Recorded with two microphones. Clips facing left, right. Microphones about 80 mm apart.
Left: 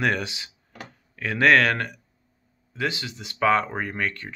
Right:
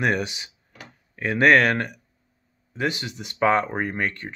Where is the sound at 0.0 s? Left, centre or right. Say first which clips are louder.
Right 1 dB; centre.